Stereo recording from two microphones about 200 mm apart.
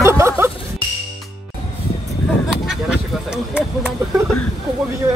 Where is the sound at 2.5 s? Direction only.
5° right (ahead or behind).